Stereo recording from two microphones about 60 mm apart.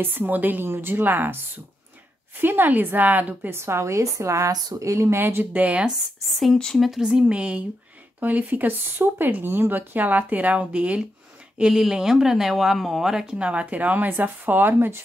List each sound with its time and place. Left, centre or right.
0.0 s speech: right
2.4 s speech: right
3.5 s a woman's voice: right
4.5 s speech: right
5.1 s speech: right
6.2 s speech: centre
7.0 s speech: centre
11.7 s speech: centre
13.5 s speech: right